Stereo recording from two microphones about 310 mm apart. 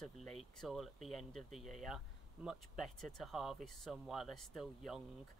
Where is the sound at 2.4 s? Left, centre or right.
Centre.